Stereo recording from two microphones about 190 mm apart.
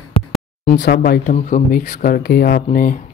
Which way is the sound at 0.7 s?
55° left (ahead or behind).